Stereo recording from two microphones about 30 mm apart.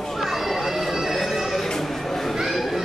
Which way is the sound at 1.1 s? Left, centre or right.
Centre.